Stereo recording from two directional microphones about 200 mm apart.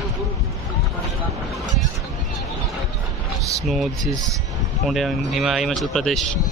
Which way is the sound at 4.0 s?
15° right (ahead or behind).